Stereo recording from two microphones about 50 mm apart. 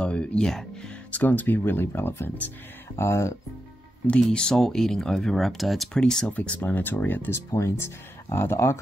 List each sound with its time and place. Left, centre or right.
0.0 s speech: left
1.1 s speech: left
1.6 s speech: left
3.0 s speech: left
4.2 s speech: centre
5.9 s speech: centre
6.2 s speech: left
7.2 s speech: left